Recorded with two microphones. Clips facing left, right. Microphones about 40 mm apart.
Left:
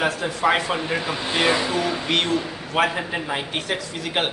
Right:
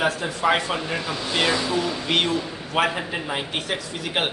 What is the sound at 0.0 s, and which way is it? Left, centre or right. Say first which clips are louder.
Speech: left 1 dB; centre.